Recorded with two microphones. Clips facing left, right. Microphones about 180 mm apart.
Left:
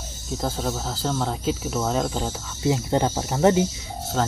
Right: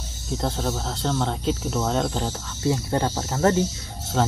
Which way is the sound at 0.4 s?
Centre (ahead or behind).